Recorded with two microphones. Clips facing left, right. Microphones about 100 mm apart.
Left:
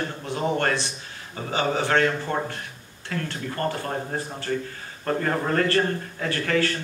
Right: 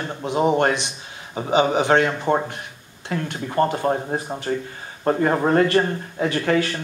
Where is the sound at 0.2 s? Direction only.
20° right (ahead or behind).